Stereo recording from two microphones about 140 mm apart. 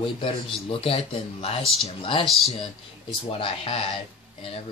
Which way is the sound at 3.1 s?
40° left (ahead or behind).